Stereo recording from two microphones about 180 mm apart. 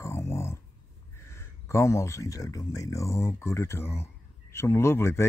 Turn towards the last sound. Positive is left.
turn(degrees=15)  # may be behind; listen again after turning